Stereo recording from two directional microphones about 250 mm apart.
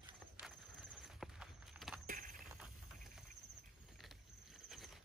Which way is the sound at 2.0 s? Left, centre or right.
Right.